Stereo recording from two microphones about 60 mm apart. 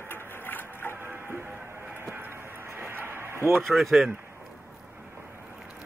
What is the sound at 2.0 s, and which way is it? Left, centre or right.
Music, right.